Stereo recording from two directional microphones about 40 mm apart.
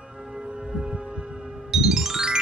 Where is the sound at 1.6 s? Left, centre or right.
Centre.